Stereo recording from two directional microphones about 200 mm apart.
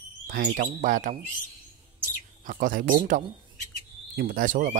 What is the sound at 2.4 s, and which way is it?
Speech, 40° right (ahead or behind).